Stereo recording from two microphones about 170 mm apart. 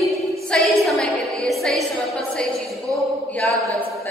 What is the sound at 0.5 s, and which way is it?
Music, centre (ahead or behind).